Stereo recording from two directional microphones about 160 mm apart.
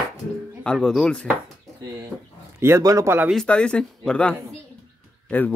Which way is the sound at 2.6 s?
20° right (ahead or behind).